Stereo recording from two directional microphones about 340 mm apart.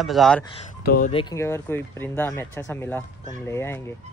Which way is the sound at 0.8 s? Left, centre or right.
Left.